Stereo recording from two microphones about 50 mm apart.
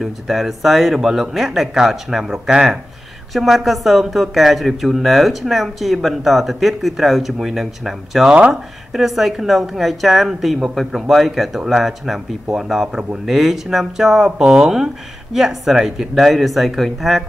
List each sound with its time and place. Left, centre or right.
0.0 s speech: centre
8.3 s speech: right
8.9 s speech: centre